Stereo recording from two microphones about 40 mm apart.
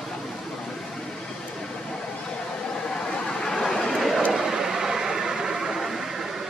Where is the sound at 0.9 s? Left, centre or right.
Centre.